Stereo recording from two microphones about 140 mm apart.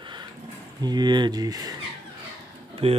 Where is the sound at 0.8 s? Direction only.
30° right (ahead or behind).